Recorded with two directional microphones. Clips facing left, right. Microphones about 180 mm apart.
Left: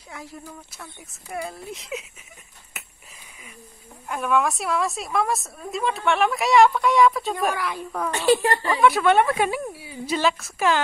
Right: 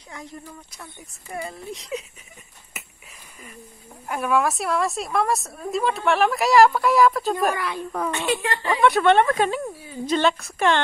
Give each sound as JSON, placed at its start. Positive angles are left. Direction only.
{"t": 0.1, "sound": "a woman's voice", "side_deg": 5}
{"t": 2.8, "sound": "wheeze", "side_deg": 0}
{"t": 4.1, "sound": "a woman's voice", "side_deg": -5}
{"t": 8.1, "sound": "a woman's voice", "side_deg": 35}
{"t": 8.7, "sound": "a woman's voice", "side_deg": 0}